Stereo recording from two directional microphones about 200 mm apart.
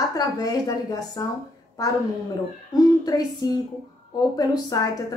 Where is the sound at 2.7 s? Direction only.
20° left (ahead or behind).